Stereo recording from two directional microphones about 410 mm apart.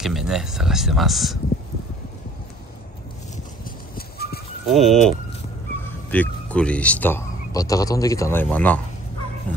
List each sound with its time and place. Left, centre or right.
0.0 s speech: centre
3.6 s a sound: left
4.6 s speech: centre